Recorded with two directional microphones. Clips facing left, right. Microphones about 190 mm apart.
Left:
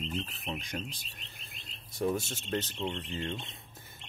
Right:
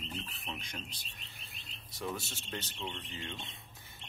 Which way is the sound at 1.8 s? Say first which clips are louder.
Left 8 dB; 45° left (ahead or behind).